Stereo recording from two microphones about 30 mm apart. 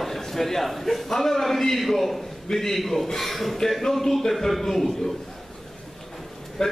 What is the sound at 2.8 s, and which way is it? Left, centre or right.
A man's voice, centre.